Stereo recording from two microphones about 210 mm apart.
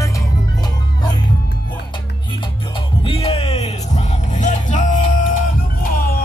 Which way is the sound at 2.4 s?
25° left (ahead or behind).